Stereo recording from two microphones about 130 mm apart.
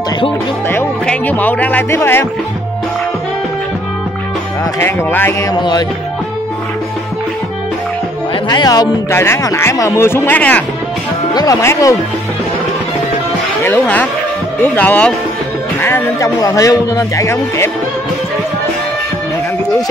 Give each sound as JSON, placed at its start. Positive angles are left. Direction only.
{"t": 1.0, "sound": "speech", "side_deg": 10}
{"t": 4.7, "sound": "speech", "side_deg": 15}
{"t": 5.5, "sound": "music", "side_deg": 35}
{"t": 8.5, "sound": "a man's voice", "side_deg": 30}
{"t": 11.3, "sound": "a man's voice", "side_deg": 25}
{"t": 13.6, "sound": "a man's voice", "side_deg": 15}